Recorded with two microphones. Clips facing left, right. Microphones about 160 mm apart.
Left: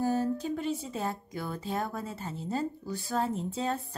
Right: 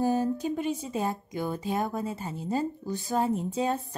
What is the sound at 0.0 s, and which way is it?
Speech, 15° right (ahead or behind).